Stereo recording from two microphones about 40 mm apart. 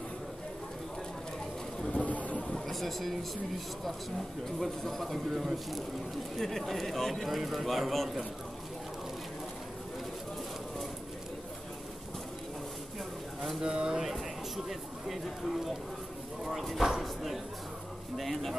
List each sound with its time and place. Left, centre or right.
1.9 s a sound: left
2.1 s a sound: left
2.7 s speech: centre
4.6 s speech: centre
13.6 s speech: centre
14.7 s speech: centre